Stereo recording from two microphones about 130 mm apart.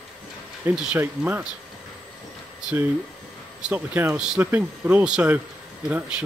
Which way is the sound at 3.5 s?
10° right (ahead or behind).